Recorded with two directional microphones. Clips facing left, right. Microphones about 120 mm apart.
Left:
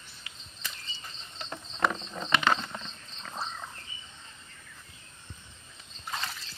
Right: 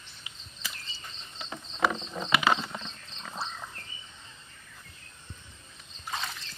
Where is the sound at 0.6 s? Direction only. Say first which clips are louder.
Even; 5° right (ahead or behind).